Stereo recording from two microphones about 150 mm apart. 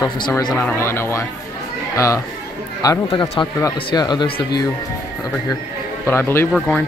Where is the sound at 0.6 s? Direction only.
15° left (ahead or behind).